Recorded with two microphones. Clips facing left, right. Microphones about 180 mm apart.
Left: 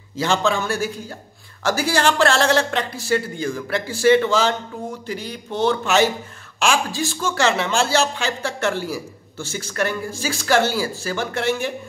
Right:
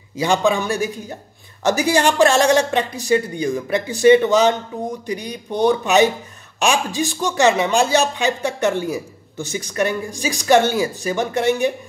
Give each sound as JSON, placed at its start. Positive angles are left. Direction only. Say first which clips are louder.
{"t": 0.1, "sound": "speech", "louder": "right 3 dB", "side_deg": -15}